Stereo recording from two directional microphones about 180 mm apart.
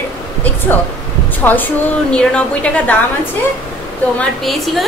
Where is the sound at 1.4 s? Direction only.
10° left (ahead or behind).